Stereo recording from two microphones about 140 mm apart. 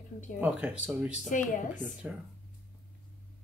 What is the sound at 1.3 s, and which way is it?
Speech, 65° left (ahead or behind).